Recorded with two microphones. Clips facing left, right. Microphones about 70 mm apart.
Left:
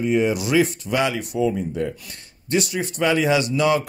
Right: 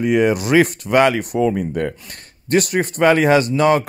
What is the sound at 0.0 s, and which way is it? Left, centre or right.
Speech, right.